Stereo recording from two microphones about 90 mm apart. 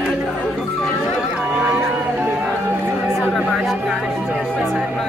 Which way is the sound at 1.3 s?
10° right (ahead or behind).